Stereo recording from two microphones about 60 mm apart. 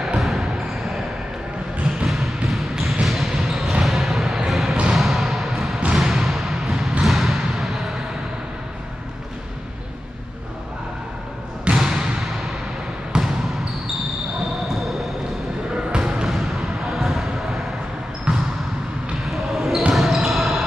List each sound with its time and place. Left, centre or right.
0.2 s basketball bounce: centre
2.0 s bouncing: centre
3.1 s basketball bounce: centre
3.8 s a sound: centre
11.6 s trickle: centre
14.7 s basketball bounce: centre
15.9 s basketball bounce: centre
18.3 s basketball bounce: centre
19.2 s basketball bounce: centre